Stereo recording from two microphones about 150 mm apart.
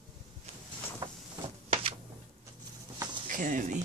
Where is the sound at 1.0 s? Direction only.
25° right (ahead or behind).